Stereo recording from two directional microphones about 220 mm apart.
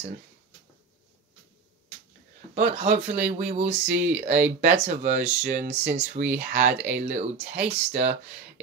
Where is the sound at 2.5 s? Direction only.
35° right (ahead or behind).